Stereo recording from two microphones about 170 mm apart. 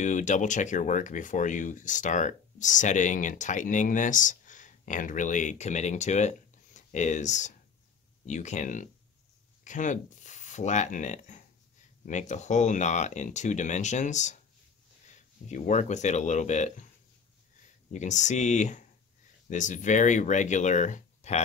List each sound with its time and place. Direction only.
0.0 s speech: 45° left (ahead or behind)
15.4 s speech: 45° left (ahead or behind)
17.9 s speech: 45° left (ahead or behind)